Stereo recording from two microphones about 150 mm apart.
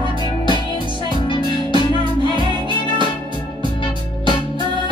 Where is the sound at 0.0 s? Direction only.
30° left (ahead or behind).